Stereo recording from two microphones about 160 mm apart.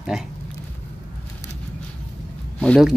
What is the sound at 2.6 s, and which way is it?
Speech, 5° left (ahead or behind).